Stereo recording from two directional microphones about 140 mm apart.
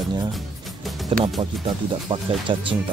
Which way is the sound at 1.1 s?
40° right (ahead or behind).